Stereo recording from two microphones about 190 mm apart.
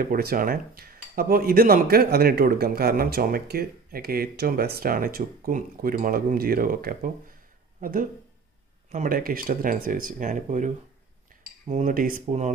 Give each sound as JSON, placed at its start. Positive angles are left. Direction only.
{"t": 0.0, "sound": "speech", "side_deg": -50}